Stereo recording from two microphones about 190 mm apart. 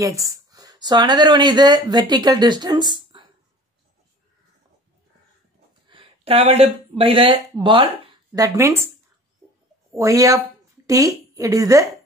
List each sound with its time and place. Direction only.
0.0 s speech: 15° right (ahead or behind)
5.9 s speech: 30° right (ahead or behind); by 8.9 s 15° right (ahead or behind)
9.9 s a woman's voice: 15° right (ahead or behind)